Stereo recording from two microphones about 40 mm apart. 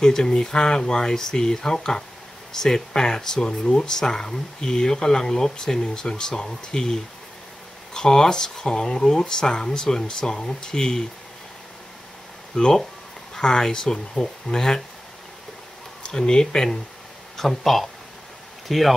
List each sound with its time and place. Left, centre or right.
0.0 s speech: centre
12.5 s speech: centre
16.0 s speech: centre
17.4 s speech: centre